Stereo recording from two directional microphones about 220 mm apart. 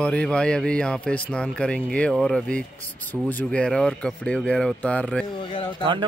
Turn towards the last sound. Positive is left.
turn(degrees=25)  # may be behind; listen again after turning